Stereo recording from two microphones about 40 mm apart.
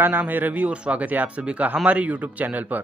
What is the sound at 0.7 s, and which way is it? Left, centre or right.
Speech, right.